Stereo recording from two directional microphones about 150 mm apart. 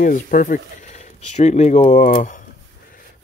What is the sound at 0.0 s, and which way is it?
Speech, 60° left (ahead or behind).